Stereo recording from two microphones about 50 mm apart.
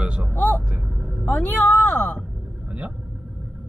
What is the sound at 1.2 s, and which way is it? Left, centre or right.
Speech, left.